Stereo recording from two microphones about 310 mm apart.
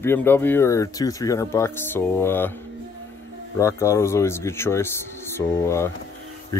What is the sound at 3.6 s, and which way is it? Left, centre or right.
Speech, centre.